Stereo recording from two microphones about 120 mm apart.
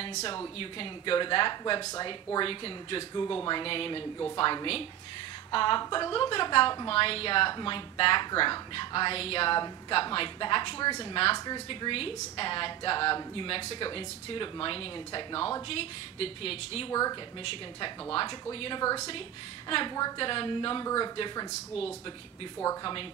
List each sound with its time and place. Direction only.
0.6 s a woman's voice: 45° left (ahead or behind)
1.6 s a woman's voice: 30° left (ahead or behind)
2.0 s a woman's voice: 45° left (ahead or behind)
6.9 s a woman's voice: 50° left (ahead or behind)
9.6 s a woman's voice: 40° left (ahead or behind)
16.9 s a woman's voice: 30° left (ahead or behind)
17.4 s a woman's voice: 45° left (ahead or behind)